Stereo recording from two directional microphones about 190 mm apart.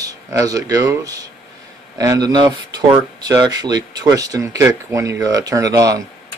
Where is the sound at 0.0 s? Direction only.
20° right (ahead or behind).